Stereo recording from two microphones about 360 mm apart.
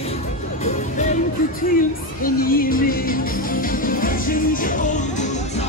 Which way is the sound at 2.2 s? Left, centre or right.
Left.